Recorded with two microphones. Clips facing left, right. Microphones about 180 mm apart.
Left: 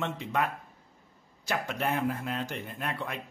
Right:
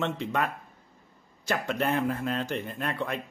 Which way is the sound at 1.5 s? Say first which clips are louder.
Right 3 dB; 10° left (ahead or behind).